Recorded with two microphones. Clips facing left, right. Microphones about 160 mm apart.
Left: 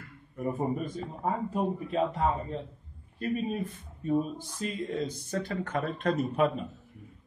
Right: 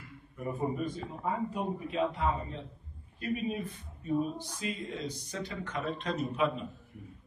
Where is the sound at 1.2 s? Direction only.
45° left (ahead or behind).